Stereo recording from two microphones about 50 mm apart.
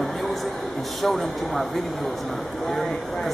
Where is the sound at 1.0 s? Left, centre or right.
Centre.